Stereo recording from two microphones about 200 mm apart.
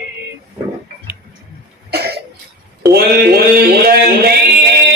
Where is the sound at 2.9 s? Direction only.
50° right (ahead or behind).